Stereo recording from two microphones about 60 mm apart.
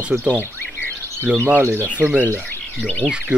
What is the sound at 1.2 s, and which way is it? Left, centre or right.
Speech, right.